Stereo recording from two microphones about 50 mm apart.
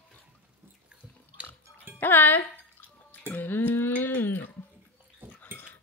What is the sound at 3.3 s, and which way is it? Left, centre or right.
A woman's voice, left.